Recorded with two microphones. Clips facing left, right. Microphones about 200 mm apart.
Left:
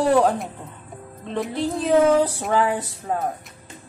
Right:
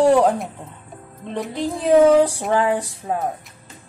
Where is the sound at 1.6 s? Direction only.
15° right (ahead or behind).